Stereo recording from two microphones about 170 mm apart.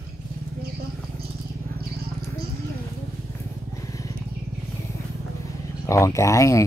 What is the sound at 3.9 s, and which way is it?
Vehicle, 20° left (ahead or behind).